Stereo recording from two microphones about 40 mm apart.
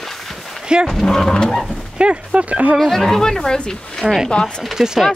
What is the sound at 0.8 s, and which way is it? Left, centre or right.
Speech, centre.